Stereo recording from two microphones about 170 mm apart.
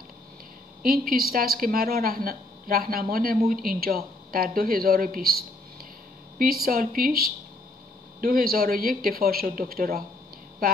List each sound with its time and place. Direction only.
0.8 s a woman's voice: 60° right (ahead or behind)
6.3 s a woman's voice: 60° right (ahead or behind)